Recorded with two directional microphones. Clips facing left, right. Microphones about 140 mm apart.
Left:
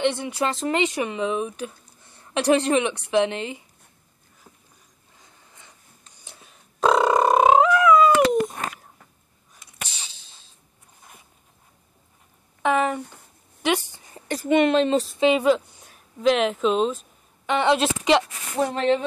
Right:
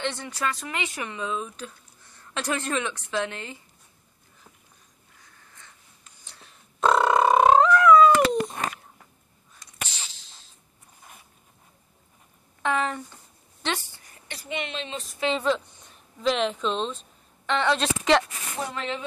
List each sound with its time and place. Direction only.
0.0 s speech: 15° left (ahead or behind)
2.1 s a sound: 20° left (ahead or behind)
2.5 s speech: 20° left (ahead or behind)
6.2 s cat: 10° left (ahead or behind)
12.6 s a sound: 15° left (ahead or behind)
14.2 s speech: 45° left (ahead or behind)
15.2 s a woman's voice: 10° left (ahead or behind)
18.7 s speech: 45° left (ahead or behind)